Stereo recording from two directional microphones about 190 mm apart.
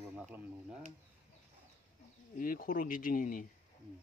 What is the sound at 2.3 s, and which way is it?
Speech, 45° left (ahead or behind).